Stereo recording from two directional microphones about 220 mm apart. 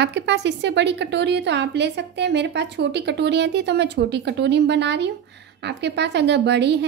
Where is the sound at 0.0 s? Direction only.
50° right (ahead or behind).